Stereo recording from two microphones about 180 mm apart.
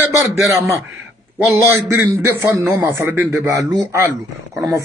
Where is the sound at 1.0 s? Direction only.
5° right (ahead or behind).